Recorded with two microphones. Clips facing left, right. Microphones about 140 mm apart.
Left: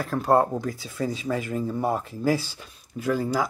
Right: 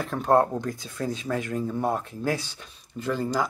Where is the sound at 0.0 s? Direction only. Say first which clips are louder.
Even; 5° left (ahead or behind).